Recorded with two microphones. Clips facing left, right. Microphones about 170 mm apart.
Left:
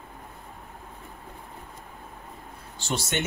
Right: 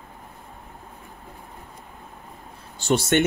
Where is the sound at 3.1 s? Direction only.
55° right (ahead or behind).